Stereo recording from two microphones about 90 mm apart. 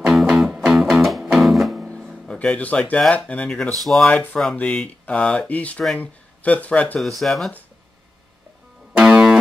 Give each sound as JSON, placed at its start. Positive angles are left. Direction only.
{"t": 0.1, "sound": "music", "side_deg": -5}
{"t": 1.9, "sound": "a sound", "side_deg": 5}
{"t": 3.1, "sound": "speech", "side_deg": 15}
{"t": 4.0, "sound": "speech", "side_deg": 15}
{"t": 7.0, "sound": "speech", "side_deg": 0}
{"t": 8.9, "sound": "music", "side_deg": -10}